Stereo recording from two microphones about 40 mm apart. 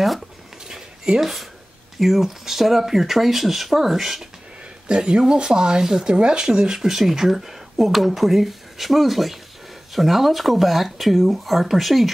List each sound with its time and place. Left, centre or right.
0.7 s a sound: centre
1.2 s speech: centre
4.8 s speech: right; by 12.1 s centre